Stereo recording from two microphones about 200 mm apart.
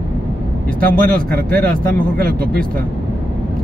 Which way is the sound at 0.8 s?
45° right (ahead or behind).